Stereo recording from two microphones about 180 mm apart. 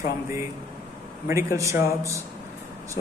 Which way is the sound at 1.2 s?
15° right (ahead or behind).